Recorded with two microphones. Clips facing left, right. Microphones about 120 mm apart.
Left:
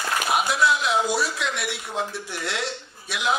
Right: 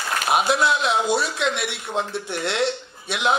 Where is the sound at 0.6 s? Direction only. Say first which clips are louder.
Right 1 dB; 25° right (ahead or behind).